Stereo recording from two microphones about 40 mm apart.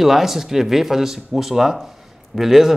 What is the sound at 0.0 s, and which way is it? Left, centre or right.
A man's voice, centre.